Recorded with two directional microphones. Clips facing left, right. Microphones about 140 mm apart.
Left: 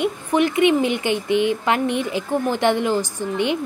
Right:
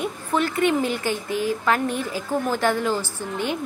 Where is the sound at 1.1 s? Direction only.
70° left (ahead or behind).